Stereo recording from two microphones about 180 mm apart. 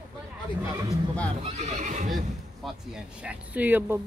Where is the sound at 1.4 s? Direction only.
35° right (ahead or behind).